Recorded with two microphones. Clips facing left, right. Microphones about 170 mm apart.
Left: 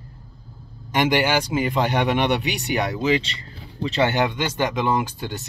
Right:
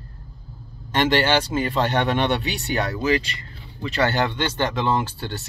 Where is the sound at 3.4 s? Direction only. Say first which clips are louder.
Left 4 dB; 30° left (ahead or behind).